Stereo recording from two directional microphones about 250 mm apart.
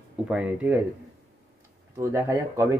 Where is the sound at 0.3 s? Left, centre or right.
Centre.